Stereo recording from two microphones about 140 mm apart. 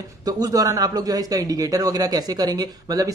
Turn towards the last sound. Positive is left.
turn(degrees=-25)  # may be behind; listen again after turning